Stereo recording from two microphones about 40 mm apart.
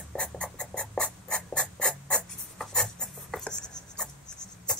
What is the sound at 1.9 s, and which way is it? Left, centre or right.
Filing, centre.